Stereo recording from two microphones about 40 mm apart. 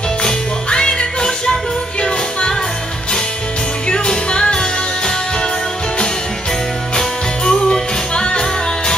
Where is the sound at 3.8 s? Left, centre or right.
Left.